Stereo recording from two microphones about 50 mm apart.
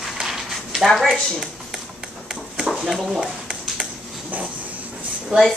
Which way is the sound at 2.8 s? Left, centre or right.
Centre.